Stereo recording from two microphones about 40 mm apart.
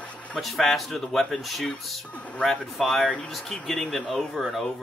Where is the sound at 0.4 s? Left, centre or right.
Centre.